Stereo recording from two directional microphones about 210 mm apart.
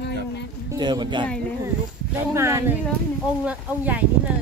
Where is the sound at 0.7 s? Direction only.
20° right (ahead or behind).